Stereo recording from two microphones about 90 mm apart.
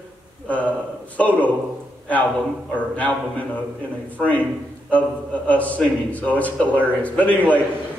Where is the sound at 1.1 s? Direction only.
15° left (ahead or behind).